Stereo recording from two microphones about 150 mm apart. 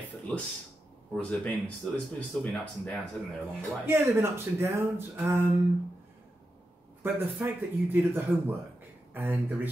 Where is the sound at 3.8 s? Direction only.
15° right (ahead or behind).